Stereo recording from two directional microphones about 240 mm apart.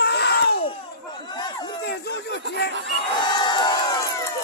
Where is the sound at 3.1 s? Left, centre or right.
Centre.